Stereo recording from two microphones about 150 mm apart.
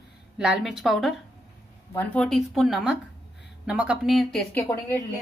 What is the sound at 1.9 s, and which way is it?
Speech, 15° left (ahead or behind).